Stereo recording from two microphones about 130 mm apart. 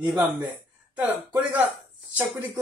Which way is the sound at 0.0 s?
35° right (ahead or behind).